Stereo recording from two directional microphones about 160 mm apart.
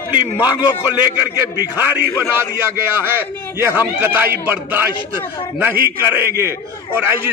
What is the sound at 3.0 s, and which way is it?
Speech, 15° right (ahead or behind).